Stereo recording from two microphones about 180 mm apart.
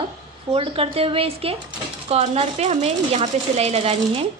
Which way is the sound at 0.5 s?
30° right (ahead or behind).